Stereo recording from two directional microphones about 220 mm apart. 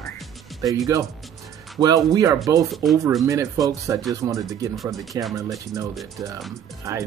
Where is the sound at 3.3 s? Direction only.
15° right (ahead or behind).